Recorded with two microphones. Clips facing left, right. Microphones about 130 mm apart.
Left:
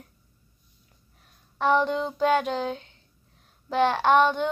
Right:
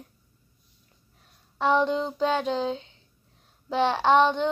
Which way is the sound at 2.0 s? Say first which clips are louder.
Even; 20° right (ahead or behind).